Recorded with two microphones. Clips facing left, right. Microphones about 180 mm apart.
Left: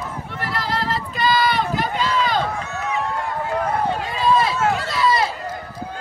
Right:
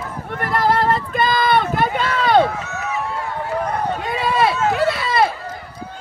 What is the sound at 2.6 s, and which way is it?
Run, 5° right (ahead or behind).